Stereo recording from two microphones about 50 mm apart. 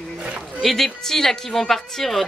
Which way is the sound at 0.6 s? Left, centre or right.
Centre.